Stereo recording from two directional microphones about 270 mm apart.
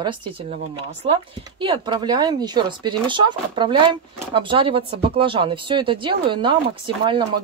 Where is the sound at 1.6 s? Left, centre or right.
Centre.